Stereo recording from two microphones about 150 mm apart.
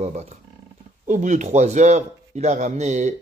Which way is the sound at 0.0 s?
50° right (ahead or behind).